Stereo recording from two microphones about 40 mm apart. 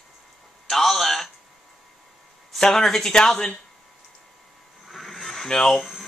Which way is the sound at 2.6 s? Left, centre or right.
Centre.